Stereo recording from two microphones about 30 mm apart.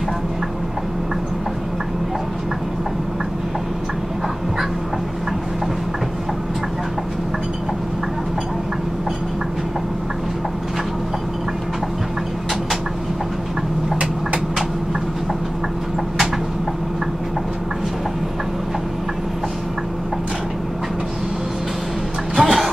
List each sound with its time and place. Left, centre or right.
22.4 s music: centre